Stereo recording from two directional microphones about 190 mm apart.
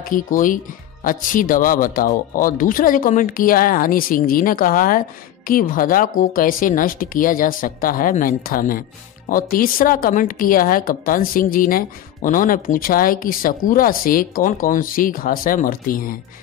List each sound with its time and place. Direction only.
0.0 s a woman's voice: 45° left (ahead or behind)